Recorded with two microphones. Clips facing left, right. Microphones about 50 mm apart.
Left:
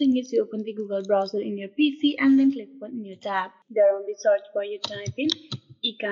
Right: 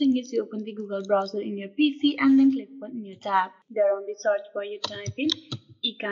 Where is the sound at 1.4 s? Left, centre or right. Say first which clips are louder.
Left 2 dB; centre.